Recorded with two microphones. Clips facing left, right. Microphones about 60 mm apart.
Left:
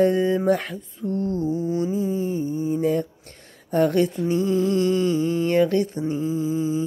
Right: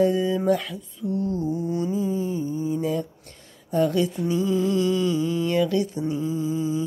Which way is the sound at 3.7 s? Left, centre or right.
Left.